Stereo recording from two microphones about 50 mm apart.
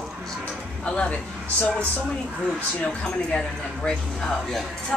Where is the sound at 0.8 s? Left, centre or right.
Left.